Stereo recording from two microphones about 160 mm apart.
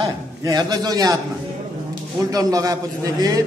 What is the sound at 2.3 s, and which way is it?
A man's voice, 25° right (ahead or behind).